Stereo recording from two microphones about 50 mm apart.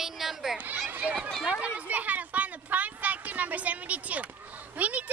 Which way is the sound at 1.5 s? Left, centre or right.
Right.